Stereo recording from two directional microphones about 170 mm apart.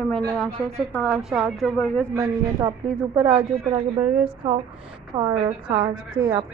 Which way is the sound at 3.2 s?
30° right (ahead or behind).